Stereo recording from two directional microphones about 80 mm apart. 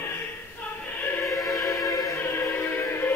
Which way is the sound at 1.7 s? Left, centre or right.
Left.